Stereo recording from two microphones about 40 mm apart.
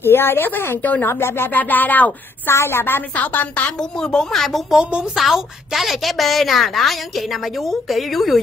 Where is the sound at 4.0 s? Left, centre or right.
Centre.